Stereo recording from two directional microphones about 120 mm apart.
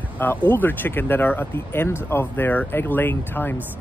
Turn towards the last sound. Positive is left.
turn(degrees=15)  # may be behind; listen again after turning